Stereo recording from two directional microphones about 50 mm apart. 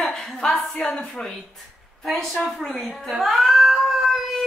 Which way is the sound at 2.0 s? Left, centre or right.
Centre.